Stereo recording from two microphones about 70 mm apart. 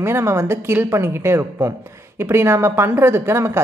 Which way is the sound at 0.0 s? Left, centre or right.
Right.